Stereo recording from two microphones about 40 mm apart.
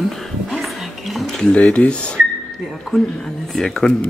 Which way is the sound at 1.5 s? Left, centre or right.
Left.